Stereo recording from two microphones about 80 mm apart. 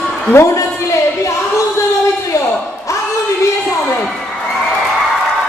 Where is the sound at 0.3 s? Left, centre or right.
Left.